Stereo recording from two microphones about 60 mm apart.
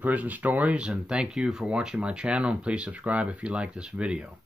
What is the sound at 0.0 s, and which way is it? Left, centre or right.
Speech, right.